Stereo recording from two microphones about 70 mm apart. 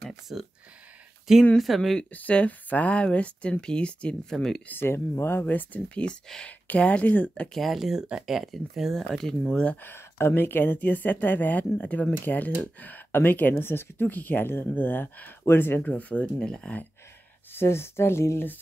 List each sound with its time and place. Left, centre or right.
0.0 s speech: centre
2.0 s speech: centre
4.6 s speech: left
6.2 s speech: centre
6.7 s speech: centre
7.5 s speech: centre
9.8 s speech: left; by 16.8 s centre
17.6 s speech: left